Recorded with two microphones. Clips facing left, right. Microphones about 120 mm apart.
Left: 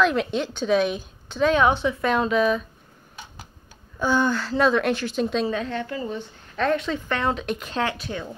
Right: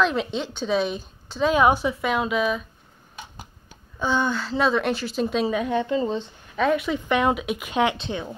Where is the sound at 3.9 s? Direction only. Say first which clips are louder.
Left 2 dB; centre (ahead or behind); by 6.2 s 20° right (ahead or behind).